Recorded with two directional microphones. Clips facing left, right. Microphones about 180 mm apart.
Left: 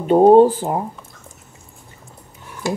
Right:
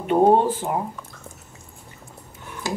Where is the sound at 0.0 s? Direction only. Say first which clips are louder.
Left 7 dB; 35° left (ahead or behind).